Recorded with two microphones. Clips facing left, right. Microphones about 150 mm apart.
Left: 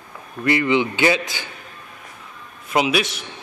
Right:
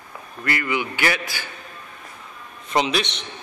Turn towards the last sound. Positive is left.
turn(degrees=5)  # may be behind; listen again after turning